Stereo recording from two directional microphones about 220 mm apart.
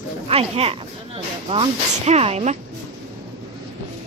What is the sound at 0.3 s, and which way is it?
Speech, 25° right (ahead or behind).